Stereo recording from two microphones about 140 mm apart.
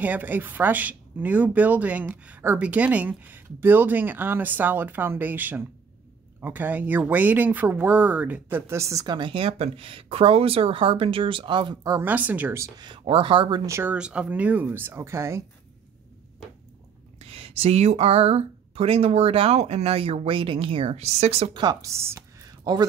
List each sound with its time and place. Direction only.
0.0 s speech: 10° right (ahead or behind); by 12.0 s 30° right (ahead or behind)
12.0 s speech: 10° right (ahead or behind)
12.8 s speech: 35° right (ahead or behind)
13.7 s speech: 20° right (ahead or behind)
13.9 s speech: 5° right (ahead or behind)
17.2 s speech: 45° right (ahead or behind)
21.5 s speech: 25° right (ahead or behind)